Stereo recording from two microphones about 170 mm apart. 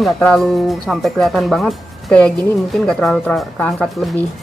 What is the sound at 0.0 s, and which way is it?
Speech, 5° left (ahead or behind).